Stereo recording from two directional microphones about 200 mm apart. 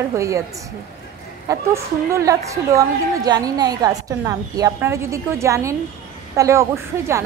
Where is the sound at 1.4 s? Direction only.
15° right (ahead or behind).